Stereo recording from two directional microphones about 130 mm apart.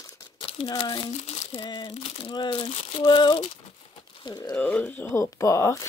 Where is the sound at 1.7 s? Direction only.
40° left (ahead or behind).